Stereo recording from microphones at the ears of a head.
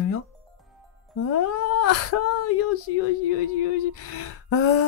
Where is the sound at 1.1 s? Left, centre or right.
Left.